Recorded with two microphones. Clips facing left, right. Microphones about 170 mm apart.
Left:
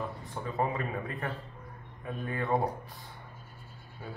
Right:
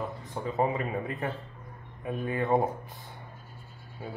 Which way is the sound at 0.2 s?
20° right (ahead or behind).